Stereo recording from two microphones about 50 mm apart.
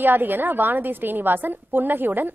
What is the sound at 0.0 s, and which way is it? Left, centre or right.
A woman's voice, right.